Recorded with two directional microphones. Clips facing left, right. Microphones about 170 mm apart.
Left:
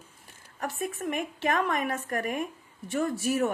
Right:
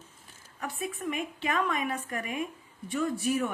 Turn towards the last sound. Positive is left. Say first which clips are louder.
# left 2 dB
turn(degrees=45)  # may be behind; listen again after turning